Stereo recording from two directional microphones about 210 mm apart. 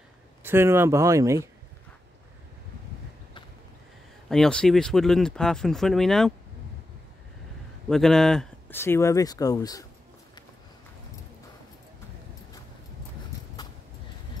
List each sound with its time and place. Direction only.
0.4 s speech: 10° right (ahead or behind)
4.3 s speech: 5° left (ahead or behind)
7.9 s speech: centre (ahead or behind)